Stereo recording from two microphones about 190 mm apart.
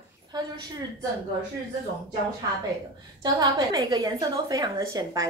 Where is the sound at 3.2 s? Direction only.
20° right (ahead or behind).